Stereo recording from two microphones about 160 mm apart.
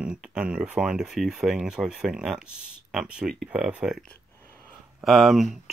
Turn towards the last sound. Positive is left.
turn(degrees=0)  # may be behind; listen again after turning